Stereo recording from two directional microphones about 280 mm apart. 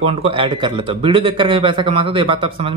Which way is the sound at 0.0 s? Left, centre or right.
Centre.